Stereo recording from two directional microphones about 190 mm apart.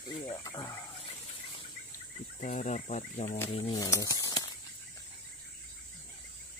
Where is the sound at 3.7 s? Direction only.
20° left (ahead or behind).